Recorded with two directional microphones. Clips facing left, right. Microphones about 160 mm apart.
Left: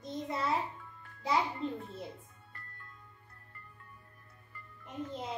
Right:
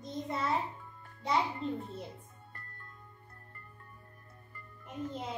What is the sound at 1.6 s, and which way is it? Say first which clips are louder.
Music: right 1 dB; centre (ahead or behind).